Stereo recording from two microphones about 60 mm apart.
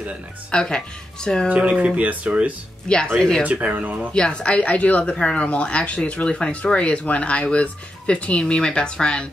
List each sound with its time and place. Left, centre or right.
0.5 s speech: centre
1.5 s speech: right
3.2 s speech: centre
3.4 s speech: right
4.1 s a woman's voice: centre